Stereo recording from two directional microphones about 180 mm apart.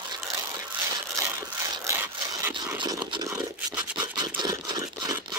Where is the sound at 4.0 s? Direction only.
20° right (ahead or behind).